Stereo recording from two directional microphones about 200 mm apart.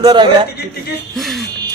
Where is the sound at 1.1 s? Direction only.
Centre (ahead or behind).